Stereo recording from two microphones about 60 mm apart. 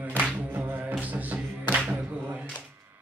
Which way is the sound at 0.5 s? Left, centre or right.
Right.